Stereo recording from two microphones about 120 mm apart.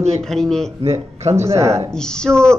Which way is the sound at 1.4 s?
25° right (ahead or behind).